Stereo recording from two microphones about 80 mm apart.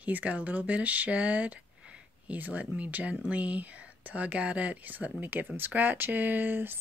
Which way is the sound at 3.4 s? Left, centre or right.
Centre.